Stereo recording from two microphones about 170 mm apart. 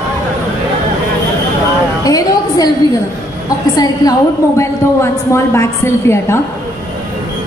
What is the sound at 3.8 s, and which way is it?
A woman's voice, 20° left (ahead or behind).